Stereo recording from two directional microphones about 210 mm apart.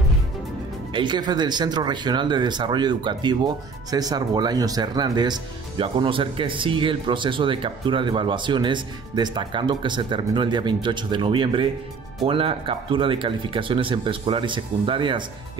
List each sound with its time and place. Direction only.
0.9 s speech: 20° right (ahead or behind)